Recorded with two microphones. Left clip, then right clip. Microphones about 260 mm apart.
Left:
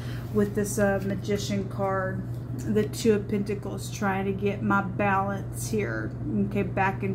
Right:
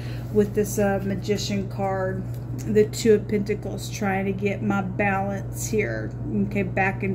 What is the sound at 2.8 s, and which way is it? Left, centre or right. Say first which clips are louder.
Speech: right 6 dB; right.